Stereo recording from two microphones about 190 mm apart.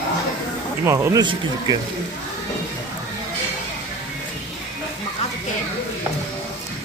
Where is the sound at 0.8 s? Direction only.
15° right (ahead or behind).